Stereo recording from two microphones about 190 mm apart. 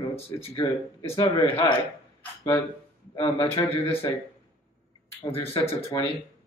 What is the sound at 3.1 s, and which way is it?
Speech, 30° left (ahead or behind).